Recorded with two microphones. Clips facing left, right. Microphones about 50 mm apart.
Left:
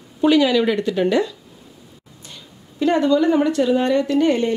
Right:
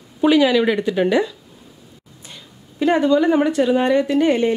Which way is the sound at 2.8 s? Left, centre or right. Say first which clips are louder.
Right 1 dB; centre.